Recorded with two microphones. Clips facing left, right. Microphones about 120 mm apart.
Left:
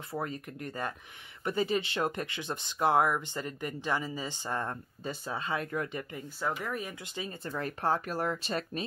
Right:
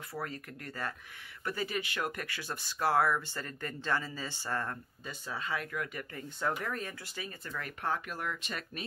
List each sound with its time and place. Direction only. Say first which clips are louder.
0.1 s speech: left 4 dB; 20° left (ahead or behind)
5.0 s speech: left 4 dB; 30° left (ahead or behind)
6.1 s speech: right 1 dB; 5° left (ahead or behind); by 8.8 s 35° left (ahead or behind)